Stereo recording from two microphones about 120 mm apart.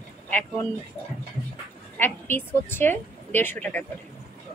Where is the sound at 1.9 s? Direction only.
15° left (ahead or behind).